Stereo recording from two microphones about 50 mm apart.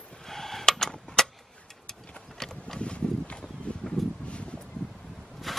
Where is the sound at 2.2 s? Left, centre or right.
Centre.